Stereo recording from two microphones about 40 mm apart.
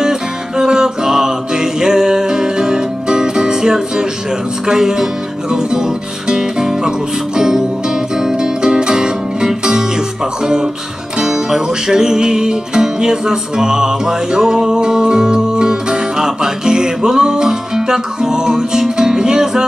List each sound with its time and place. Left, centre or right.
0.0 s music: centre
10.4 s speech: centre
11.1 s music: centre